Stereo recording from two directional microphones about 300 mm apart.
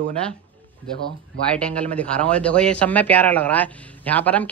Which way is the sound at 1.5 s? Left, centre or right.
Centre.